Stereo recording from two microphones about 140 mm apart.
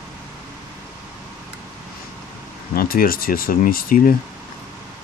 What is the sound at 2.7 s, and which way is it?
Speech, 90° left.